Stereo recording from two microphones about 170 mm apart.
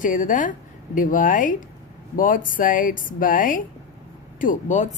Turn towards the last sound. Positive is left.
turn(degrees=45)  # may be behind; listen again after turning